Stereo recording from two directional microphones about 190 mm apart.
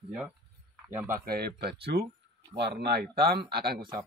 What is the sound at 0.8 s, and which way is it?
Speech, 10° right (ahead or behind).